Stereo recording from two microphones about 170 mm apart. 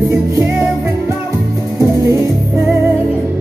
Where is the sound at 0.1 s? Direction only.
15° right (ahead or behind).